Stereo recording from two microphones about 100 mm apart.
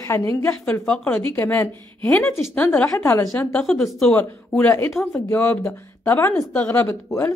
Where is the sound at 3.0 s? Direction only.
30° left (ahead or behind).